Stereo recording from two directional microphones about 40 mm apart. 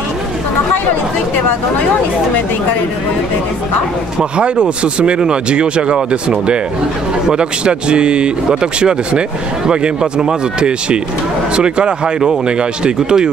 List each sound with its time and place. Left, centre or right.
4.2 s speech: right
7.2 s speech: right